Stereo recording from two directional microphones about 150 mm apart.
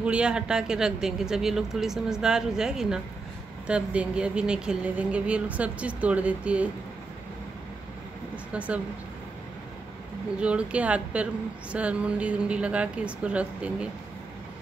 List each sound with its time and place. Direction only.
0.0 s speech: 5° right (ahead or behind)
8.5 s speech: 10° right (ahead or behind)
10.4 s speech: 10° right (ahead or behind)